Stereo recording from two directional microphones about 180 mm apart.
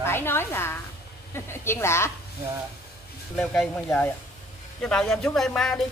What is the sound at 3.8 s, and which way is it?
A woman's voice, 15° left (ahead or behind).